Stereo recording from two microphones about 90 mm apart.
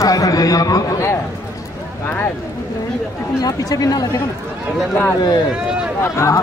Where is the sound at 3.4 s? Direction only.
45° left (ahead or behind).